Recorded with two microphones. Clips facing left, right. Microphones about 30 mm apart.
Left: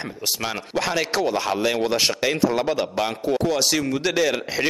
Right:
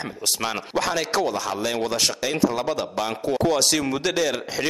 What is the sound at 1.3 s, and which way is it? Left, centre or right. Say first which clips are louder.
A man's voice: left 3 dB; left.